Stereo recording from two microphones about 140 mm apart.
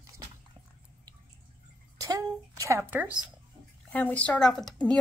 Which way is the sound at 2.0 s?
25° right (ahead or behind).